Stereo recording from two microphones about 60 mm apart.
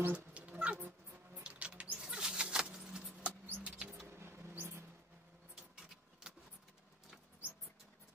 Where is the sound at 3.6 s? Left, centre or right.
Centre.